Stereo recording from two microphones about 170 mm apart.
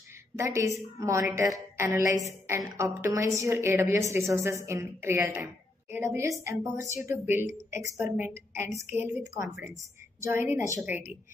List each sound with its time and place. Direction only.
0.4 s a woman's voice: 15° right (ahead or behind)